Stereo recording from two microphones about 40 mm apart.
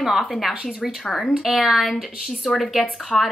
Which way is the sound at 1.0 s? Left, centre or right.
Centre.